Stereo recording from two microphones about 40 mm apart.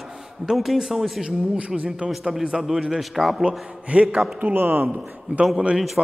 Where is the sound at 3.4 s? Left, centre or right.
Right.